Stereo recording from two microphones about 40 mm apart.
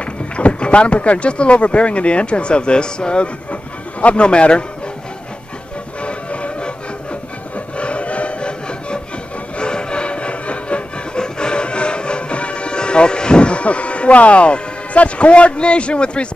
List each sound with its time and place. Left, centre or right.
0.0 s speech: left
6.0 s music: left
7.5 s a sound: left
9.6 s music: left